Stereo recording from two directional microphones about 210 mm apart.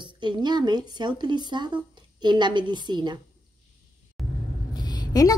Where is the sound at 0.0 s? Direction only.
20° right (ahead or behind).